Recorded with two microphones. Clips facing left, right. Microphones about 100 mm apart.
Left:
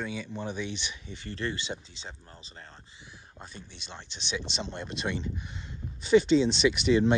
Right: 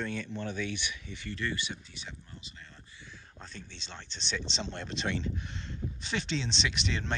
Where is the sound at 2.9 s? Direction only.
15° left (ahead or behind).